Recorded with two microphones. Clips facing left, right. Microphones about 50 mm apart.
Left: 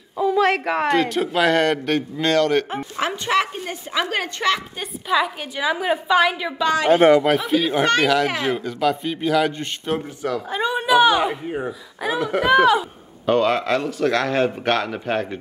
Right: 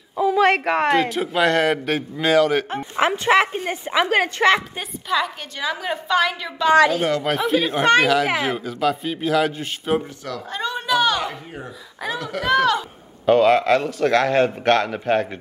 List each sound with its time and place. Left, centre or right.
0.1 s a man's voice: centre
2.8 s speech: centre
5.0 s a woman's voice: centre
10.2 s a woman's voice: centre
13.2 s a man's voice: centre